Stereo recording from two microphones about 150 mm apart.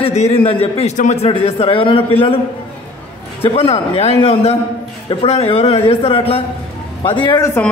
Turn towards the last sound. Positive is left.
turn(degrees=15)  # may be behind; listen again after turning